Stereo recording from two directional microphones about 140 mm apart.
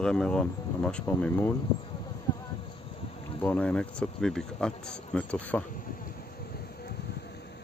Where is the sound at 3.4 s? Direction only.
10° left (ahead or behind).